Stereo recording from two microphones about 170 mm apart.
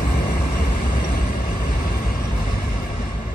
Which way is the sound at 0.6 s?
55° left (ahead or behind).